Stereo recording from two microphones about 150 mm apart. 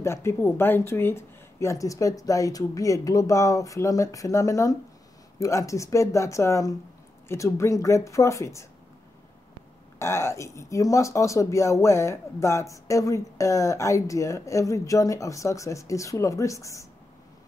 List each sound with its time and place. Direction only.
0.0 s speech: 15° left (ahead or behind)
9.9 s speech: 20° left (ahead or behind)